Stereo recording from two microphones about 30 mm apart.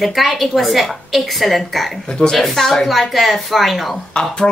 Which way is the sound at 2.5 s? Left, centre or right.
Centre.